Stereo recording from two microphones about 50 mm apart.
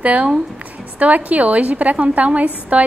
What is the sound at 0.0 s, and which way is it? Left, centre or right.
A woman's voice, right.